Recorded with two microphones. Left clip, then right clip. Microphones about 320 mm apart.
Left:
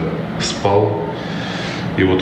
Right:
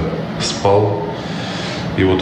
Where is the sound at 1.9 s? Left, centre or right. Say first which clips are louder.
Even; centre.